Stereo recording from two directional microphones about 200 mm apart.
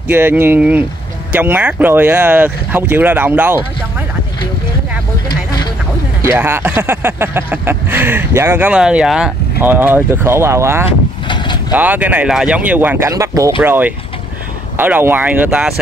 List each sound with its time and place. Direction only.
0.1 s speech: 10° right (ahead or behind)
5.3 s a sound: 20° left (ahead or behind)
6.2 s speech: 10° right (ahead or behind)
10.9 s vehicle: 25° left (ahead or behind)
11.7 s speech: 10° right (ahead or behind)